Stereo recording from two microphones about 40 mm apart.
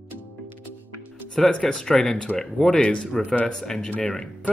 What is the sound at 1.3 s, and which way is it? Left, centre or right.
Speech, centre.